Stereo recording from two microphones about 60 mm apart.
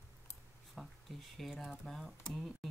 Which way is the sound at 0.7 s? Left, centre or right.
Centre.